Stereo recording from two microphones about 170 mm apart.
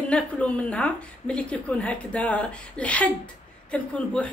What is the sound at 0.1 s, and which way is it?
A woman's voice, 5° left (ahead or behind).